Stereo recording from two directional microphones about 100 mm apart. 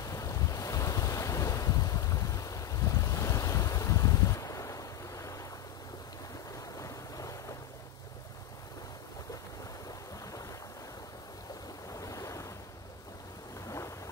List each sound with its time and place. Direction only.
0.0 s waves: 35° left (ahead or behind)
6.8 s boat: 35° left (ahead or behind)
11.9 s waves: 35° left (ahead or behind)
13.7 s vehicle: 30° left (ahead or behind)